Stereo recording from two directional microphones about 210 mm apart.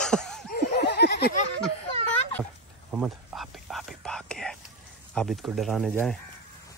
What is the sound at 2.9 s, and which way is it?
Whispering, 5° right (ahead or behind).